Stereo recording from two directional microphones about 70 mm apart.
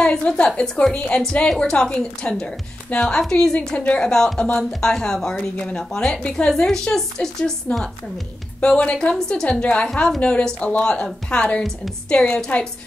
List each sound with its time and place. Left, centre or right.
0.0 s a woman's voice: centre
3.2 s a woman's voice: centre
8.5 s a woman's voice: centre